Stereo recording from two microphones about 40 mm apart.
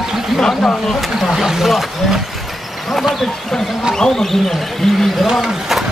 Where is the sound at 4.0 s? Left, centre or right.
Centre.